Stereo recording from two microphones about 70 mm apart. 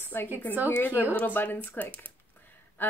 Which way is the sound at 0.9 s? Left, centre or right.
Right.